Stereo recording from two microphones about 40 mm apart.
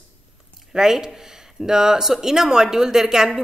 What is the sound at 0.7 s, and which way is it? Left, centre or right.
A woman's voice, centre.